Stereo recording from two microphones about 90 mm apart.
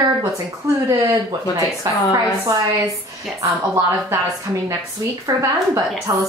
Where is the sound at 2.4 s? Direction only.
45° right (ahead or behind).